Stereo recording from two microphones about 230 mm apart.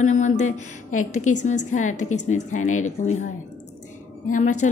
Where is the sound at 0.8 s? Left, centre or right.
Left.